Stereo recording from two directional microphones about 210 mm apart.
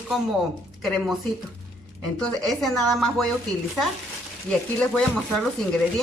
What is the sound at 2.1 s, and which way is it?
Speech, centre (ahead or behind).